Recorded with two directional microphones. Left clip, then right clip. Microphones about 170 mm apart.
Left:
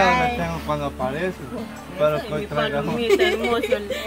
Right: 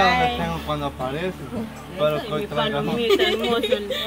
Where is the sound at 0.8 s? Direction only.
20° left (ahead or behind).